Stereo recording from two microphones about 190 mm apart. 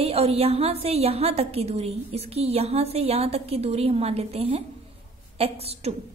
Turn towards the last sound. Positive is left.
turn(degrees=-30)  # may be behind; listen again after turning